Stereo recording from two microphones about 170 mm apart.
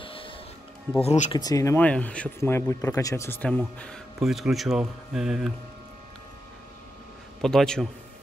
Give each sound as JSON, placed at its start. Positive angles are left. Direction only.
{"t": 0.0, "sound": "music", "side_deg": 30}
{"t": 1.0, "sound": "speech", "side_deg": 45}
{"t": 1.3, "sound": "speech", "side_deg": 20}
{"t": 7.4, "sound": "a man's voice", "side_deg": 5}